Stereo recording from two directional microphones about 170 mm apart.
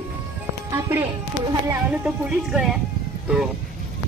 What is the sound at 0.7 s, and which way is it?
Speech, 15° right (ahead or behind).